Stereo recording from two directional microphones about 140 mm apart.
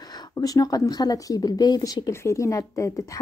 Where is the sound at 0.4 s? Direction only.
25° left (ahead or behind).